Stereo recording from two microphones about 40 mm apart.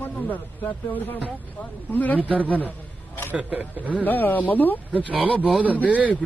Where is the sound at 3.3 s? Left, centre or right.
Right.